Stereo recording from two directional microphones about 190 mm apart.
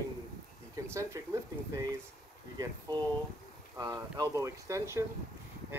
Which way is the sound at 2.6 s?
20° right (ahead or behind).